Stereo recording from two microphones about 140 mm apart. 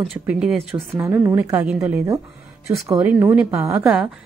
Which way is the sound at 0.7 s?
15° right (ahead or behind).